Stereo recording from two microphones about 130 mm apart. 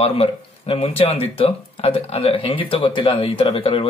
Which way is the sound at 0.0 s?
50° left (ahead or behind).